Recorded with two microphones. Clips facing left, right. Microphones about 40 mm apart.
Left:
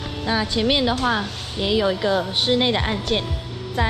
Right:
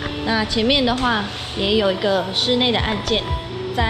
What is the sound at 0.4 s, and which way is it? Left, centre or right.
Speech, right.